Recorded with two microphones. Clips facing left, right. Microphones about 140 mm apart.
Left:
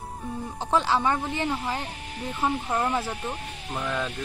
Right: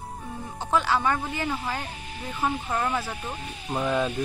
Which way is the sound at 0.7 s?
30° left (ahead or behind).